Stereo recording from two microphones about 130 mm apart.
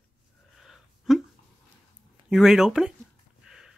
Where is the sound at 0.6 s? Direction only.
Centre (ahead or behind).